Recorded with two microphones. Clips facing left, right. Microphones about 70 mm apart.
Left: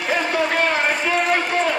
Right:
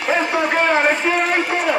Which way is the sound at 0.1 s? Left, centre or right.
Right.